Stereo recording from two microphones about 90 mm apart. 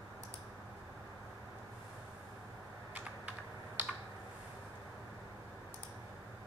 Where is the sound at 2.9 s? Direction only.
15° right (ahead or behind).